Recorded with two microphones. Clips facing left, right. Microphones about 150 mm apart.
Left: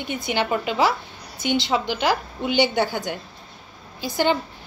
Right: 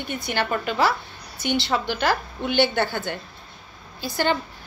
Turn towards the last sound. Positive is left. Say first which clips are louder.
# left 2 dB
turn(degrees=15)  # may be behind; listen again after turning